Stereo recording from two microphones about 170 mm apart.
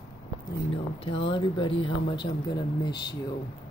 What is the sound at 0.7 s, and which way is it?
Speech, 30° left (ahead or behind).